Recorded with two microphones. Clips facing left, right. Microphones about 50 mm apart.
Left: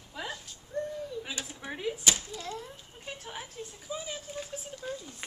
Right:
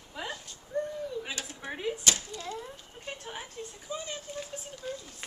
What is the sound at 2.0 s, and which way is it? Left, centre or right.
Speech, centre.